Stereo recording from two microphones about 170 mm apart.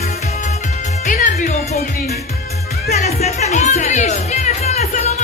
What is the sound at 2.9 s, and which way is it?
Music, 40° left (ahead or behind).